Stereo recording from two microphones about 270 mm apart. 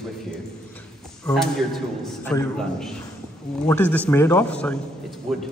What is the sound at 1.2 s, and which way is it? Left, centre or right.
A man's voice, centre.